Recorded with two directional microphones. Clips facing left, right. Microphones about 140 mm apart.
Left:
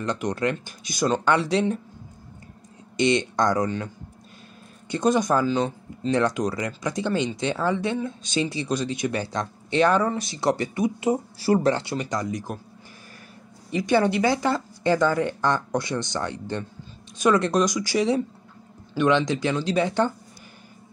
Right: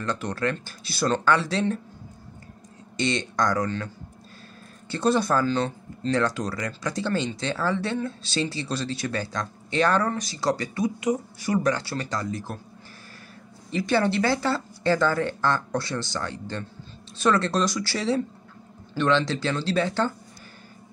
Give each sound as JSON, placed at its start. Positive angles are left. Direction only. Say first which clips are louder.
{"t": 0.0, "sound": "speech", "louder": "left 2 dB", "side_deg": 20}
{"t": 3.0, "sound": "speech", "louder": "left 4 dB", "side_deg": 20}
{"t": 13.7, "sound": "speech", "louder": "left 2 dB", "side_deg": 15}